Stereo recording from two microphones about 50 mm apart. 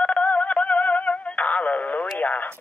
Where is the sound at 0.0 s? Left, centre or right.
Left.